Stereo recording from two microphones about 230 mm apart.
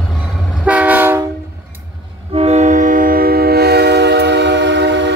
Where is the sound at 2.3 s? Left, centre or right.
Right.